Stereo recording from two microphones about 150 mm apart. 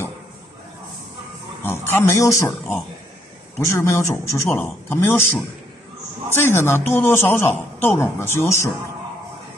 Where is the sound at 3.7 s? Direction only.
20° left (ahead or behind).